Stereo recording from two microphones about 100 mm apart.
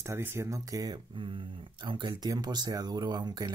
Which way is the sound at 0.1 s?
25° right (ahead or behind).